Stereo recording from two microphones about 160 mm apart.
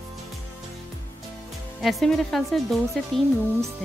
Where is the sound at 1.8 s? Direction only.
Centre (ahead or behind).